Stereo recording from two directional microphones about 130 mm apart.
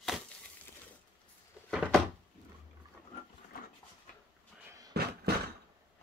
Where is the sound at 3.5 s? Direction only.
90° left.